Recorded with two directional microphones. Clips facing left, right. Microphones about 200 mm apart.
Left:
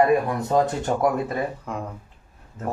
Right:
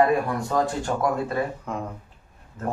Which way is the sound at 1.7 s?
Centre (ahead or behind).